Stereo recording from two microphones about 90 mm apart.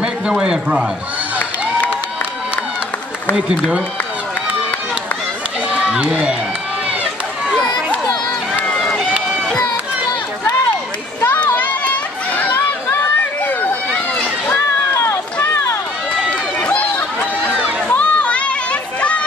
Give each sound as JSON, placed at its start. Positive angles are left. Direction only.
{"t": 0.0, "sound": "speech", "side_deg": -10}
{"t": 3.3, "sound": "a man's voice", "side_deg": -10}
{"t": 5.7, "sound": "run", "side_deg": -10}
{"t": 8.7, "sound": "run", "side_deg": 0}
{"t": 11.1, "sound": "run", "side_deg": 20}
{"t": 17.8, "sound": "a sound", "side_deg": 15}